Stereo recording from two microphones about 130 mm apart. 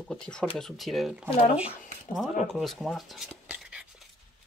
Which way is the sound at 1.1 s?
10° right (ahead or behind).